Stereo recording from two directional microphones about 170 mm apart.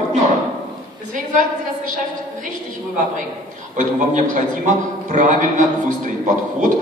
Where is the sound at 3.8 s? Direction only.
45° right (ahead or behind).